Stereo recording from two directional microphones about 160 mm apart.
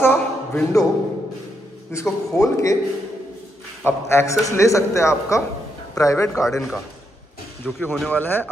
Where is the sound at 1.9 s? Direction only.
20° left (ahead or behind).